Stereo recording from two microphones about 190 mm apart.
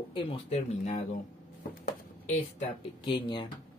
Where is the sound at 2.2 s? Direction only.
35° left (ahead or behind).